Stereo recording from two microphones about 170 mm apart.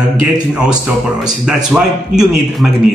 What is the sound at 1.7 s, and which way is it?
Mantra, 5° right (ahead or behind).